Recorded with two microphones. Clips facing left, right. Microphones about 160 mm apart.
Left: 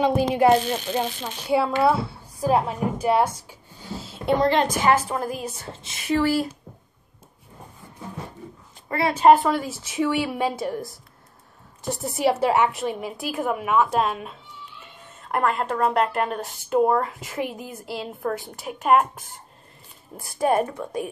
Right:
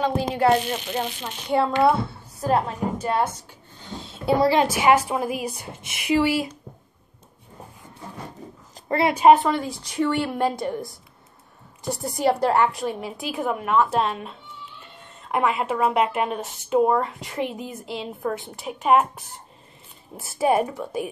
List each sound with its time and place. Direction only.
0.0 s speech: 15° left (ahead or behind); by 6.5 s 10° right (ahead or behind)
8.8 s a woman's voice: 25° right (ahead or behind)
9.1 s speech: 5° right (ahead or behind)